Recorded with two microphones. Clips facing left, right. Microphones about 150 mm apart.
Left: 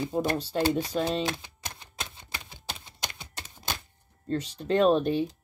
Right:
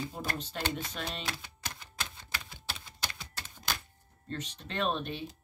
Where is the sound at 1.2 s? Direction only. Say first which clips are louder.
Left 8 dB; 20° left (ahead or behind).